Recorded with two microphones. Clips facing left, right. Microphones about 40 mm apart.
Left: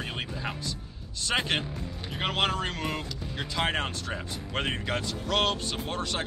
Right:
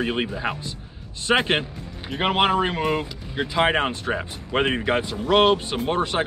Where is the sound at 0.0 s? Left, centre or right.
Right.